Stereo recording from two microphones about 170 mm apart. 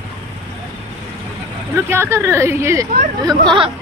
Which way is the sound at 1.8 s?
15° right (ahead or behind).